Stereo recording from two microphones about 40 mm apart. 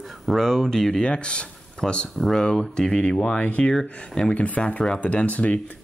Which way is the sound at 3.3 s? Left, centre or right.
Left.